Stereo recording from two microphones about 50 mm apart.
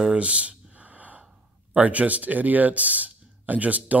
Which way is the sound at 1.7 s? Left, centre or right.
Right.